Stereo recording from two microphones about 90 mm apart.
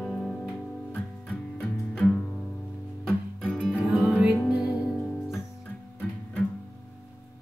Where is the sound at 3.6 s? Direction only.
5° right (ahead or behind).